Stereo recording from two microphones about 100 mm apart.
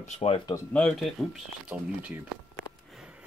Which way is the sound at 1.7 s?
20° right (ahead or behind).